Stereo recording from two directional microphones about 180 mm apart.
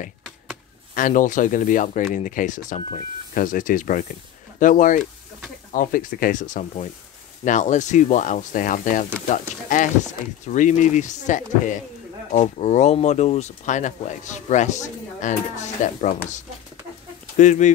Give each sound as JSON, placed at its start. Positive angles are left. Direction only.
{"t": 0.9, "sound": "speech", "side_deg": 45}